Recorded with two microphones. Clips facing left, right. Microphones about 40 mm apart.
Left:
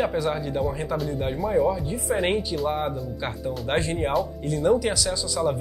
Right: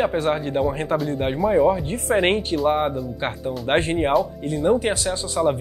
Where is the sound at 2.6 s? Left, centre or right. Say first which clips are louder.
Right 6 dB; right.